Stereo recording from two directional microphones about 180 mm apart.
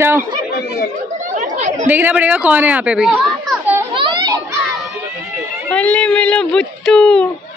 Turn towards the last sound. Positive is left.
turn(degrees=5)  # may be behind; listen again after turning